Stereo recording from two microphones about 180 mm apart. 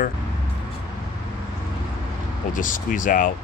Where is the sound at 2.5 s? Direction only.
45° left (ahead or behind).